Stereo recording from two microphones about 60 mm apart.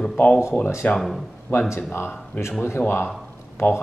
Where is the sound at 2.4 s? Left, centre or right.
Left.